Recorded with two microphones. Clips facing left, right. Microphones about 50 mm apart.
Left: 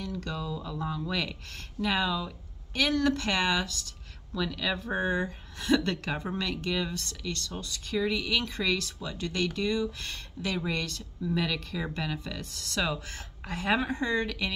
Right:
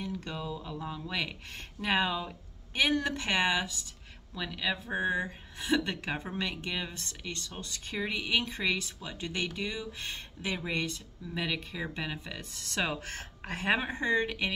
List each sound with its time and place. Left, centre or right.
0.0 s a sound: right
0.8 s speech: centre
1.8 s speech: right
4.8 s speech: centre; by 14.5 s right